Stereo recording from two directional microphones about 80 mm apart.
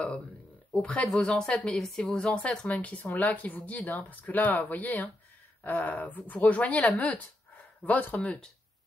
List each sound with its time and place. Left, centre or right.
0.7 s speech: centre